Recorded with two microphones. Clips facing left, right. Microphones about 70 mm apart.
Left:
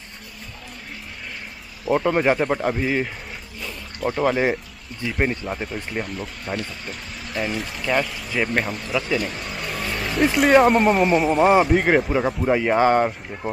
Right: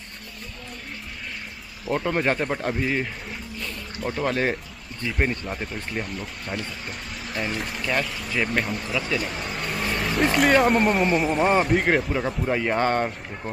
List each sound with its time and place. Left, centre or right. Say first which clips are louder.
1.9 s speech: left 5 dB; centre
3.6 s a sound: left 5 dB; centre
5.0 s speech: left 2 dB; centre
12.1 s speech: left 5 dB; centre